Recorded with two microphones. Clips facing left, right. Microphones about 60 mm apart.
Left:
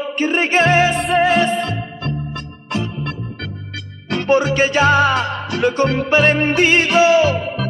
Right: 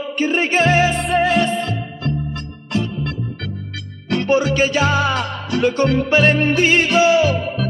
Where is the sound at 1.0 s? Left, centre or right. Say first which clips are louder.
Left 2 dB; centre.